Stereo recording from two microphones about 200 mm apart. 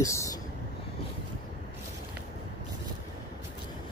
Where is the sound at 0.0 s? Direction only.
15° left (ahead or behind).